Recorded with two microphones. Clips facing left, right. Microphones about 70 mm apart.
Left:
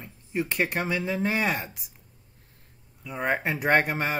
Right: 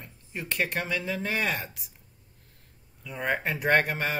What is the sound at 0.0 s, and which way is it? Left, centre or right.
Speech, centre.